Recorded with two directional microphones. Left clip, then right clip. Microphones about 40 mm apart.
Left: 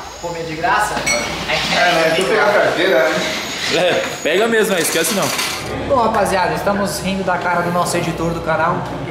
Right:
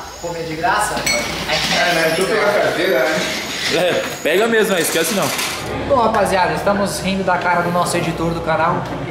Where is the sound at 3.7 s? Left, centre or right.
Centre.